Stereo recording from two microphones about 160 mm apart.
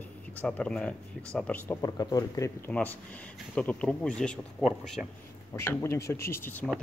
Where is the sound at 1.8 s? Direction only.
25° left (ahead or behind).